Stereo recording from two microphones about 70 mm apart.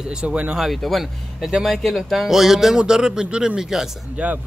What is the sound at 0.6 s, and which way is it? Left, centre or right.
Speech, centre.